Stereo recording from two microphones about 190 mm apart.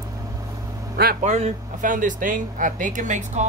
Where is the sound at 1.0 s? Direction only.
55° right (ahead or behind).